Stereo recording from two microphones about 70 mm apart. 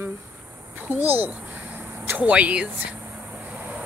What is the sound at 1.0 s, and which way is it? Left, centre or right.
Speech, right.